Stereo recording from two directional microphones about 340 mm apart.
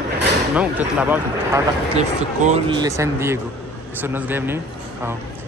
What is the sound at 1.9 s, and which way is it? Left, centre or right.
A man's voice, centre.